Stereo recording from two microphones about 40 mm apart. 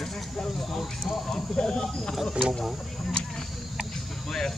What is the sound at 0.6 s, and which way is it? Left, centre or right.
Speech, centre.